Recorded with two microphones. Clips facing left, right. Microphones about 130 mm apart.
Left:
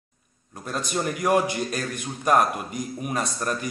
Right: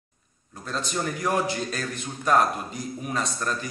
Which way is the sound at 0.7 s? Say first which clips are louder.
Left 2 dB; 15° left (ahead or behind).